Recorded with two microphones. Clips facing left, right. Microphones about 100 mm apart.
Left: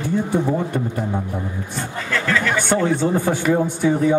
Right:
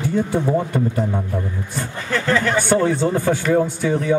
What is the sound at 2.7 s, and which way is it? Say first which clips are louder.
Speech: even; 20° left (ahead or behind).